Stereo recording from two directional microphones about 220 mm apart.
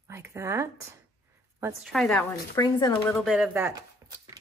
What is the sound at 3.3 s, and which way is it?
Speech, 5° right (ahead or behind).